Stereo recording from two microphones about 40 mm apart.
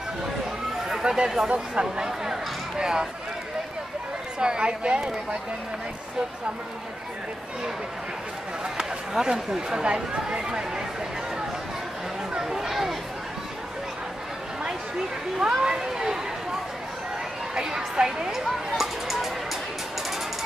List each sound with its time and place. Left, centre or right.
0.8 s a sound: centre
1.5 s speech: right
4.4 s speech: right
8.6 s speech: centre
12.4 s speech: centre
15.5 s speech: centre
17.6 s speech: centre
18.8 s music: centre